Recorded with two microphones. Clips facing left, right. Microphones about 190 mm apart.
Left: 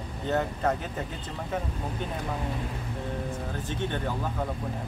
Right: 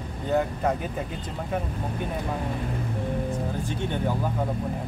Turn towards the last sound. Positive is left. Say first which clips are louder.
# right 3 dB
turn(degrees=-10)  # may be behind; listen again after turning